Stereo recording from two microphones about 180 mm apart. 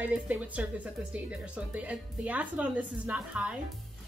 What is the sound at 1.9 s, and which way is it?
A woman's voice, 10° right (ahead or behind).